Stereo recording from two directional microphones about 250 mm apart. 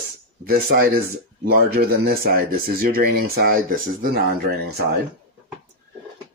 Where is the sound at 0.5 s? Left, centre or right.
Right.